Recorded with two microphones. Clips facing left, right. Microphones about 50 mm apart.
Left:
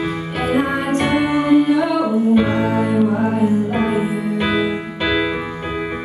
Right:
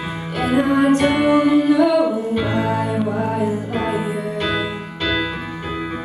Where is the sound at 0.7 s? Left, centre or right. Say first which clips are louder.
Right 5 dB; left.